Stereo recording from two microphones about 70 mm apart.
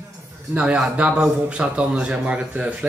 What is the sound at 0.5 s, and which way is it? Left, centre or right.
A man's voice, centre.